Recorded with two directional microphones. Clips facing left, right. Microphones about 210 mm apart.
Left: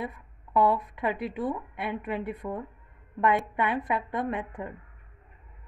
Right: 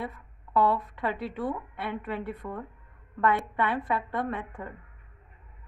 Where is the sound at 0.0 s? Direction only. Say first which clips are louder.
Left 1 dB; 15° left (ahead or behind).